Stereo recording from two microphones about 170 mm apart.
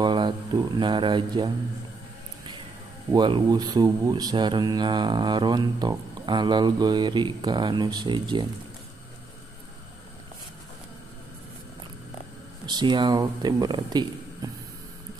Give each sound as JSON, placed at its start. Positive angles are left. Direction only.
{"t": 0.0, "sound": "a sound", "side_deg": -30}
{"t": 0.7, "sound": "speech", "side_deg": -30}
{"t": 3.1, "sound": "speech", "side_deg": -25}
{"t": 12.6, "sound": "speech", "side_deg": -25}